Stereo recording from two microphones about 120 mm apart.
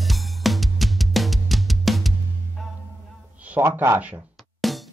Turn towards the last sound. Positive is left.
turn(degrees=0)  # may be behind; listen again after turning